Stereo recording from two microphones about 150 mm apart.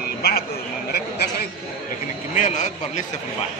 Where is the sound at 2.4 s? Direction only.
55° left (ahead or behind).